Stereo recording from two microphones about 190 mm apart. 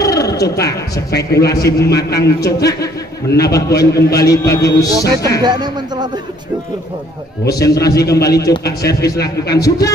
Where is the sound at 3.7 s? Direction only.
60° left (ahead or behind).